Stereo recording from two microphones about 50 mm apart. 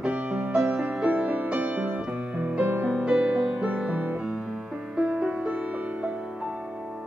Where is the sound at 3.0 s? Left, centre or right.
Centre.